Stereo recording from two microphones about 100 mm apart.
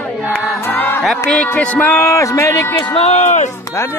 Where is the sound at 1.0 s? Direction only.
5° left (ahead or behind).